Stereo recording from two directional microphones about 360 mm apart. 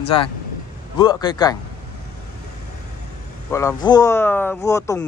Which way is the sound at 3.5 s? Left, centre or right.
Centre.